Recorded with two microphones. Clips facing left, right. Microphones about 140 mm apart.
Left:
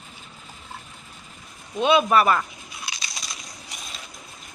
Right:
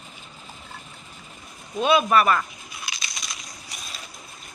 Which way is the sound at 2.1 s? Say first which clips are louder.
Even; 20° left (ahead or behind).